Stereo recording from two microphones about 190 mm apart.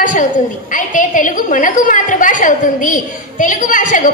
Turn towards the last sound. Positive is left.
turn(degrees=45)  # may be behind; listen again after turning